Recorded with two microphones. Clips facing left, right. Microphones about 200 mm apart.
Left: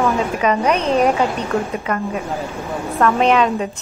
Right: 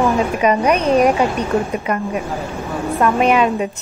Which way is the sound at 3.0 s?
10° right (ahead or behind).